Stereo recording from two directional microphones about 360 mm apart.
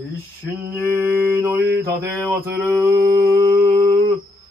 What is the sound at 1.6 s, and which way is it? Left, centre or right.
Mantra, right.